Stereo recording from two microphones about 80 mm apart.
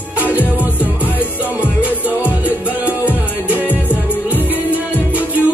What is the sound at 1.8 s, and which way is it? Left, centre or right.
Music, centre.